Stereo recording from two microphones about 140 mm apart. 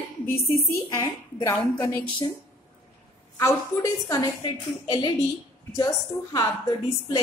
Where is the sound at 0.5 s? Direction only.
20° left (ahead or behind).